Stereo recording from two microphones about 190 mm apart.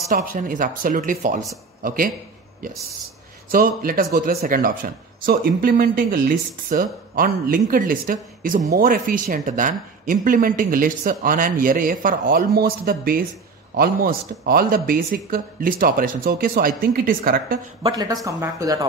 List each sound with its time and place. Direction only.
0.1 s speech: 45° right (ahead or behind)
3.4 s speech: 50° right (ahead or behind)
17.9 s speech: 20° right (ahead or behind)